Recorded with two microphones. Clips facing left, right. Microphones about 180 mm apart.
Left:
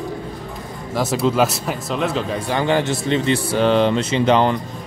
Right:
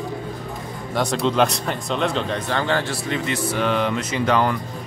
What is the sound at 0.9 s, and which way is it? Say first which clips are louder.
Speech: left 2 dB; 5° left (ahead or behind).